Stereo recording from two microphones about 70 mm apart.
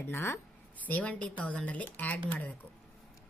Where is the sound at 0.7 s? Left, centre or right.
Left.